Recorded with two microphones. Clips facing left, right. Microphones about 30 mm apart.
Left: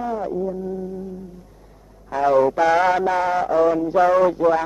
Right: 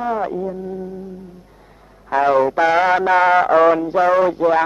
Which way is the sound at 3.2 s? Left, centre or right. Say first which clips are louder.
Right 6 dB; right.